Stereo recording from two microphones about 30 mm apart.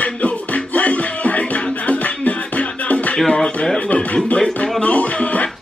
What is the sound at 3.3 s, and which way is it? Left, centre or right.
Speech, left.